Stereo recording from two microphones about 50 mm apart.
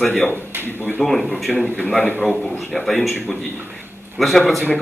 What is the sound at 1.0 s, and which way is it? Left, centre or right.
Speech, centre.